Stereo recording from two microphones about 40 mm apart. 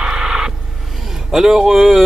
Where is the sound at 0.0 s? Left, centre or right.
Centre.